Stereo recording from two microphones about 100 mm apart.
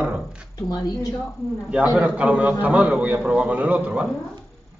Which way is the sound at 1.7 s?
10° right (ahead or behind).